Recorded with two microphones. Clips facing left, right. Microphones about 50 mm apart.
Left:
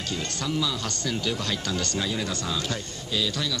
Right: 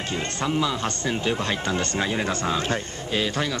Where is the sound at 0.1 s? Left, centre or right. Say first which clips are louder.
Right 4 dB; right.